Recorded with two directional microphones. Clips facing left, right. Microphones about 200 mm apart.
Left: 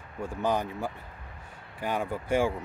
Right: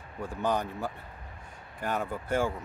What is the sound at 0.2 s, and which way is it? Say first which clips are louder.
Speech: left 1 dB; 10° left (ahead or behind).